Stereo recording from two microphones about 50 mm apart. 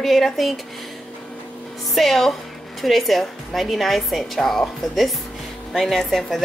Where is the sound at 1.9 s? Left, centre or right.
Centre.